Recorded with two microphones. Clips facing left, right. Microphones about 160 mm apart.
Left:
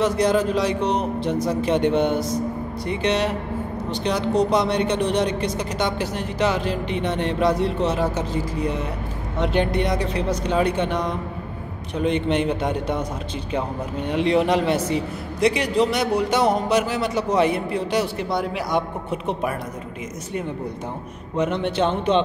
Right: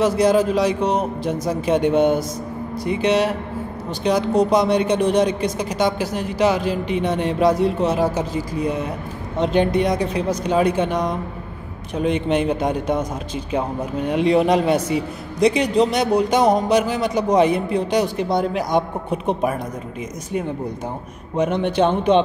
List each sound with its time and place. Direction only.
0.0 s speech: 10° right (ahead or behind)
12.3 s speech: 15° right (ahead or behind)
14.2 s speech: 15° right (ahead or behind)
21.7 s speech: 15° right (ahead or behind)